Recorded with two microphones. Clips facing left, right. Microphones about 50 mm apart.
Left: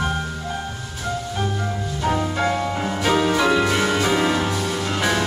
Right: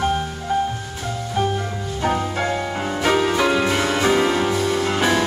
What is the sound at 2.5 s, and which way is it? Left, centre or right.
Music, centre.